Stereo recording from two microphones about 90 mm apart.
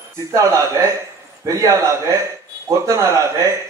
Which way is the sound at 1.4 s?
35° right (ahead or behind).